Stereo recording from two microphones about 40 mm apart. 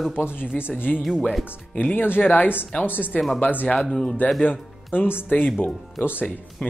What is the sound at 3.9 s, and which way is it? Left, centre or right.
Speech, centre.